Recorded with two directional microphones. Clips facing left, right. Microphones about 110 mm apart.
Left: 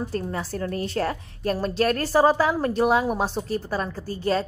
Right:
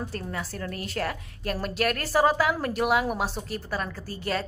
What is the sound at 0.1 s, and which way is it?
A woman's voice, 30° left (ahead or behind).